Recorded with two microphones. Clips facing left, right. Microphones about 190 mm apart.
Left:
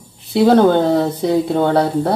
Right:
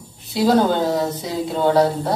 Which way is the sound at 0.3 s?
60° left (ahead or behind).